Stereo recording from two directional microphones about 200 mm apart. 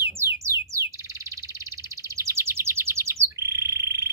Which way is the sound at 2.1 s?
15° right (ahead or behind).